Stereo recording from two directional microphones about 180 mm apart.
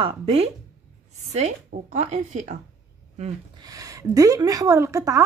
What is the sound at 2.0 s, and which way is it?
Speech, 40° right (ahead or behind).